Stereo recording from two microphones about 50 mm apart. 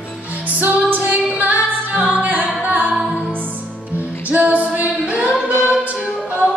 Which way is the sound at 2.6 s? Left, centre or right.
Right.